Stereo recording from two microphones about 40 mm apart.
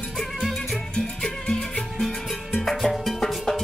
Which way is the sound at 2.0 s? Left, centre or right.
Centre.